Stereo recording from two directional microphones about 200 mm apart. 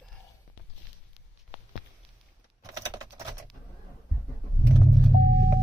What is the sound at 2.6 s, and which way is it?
Keys jangling, 20° right (ahead or behind).